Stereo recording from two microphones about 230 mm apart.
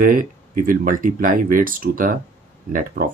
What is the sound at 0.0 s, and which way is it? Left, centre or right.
Speech, right.